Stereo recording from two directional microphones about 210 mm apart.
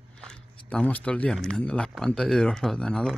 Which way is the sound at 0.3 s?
5° left (ahead or behind).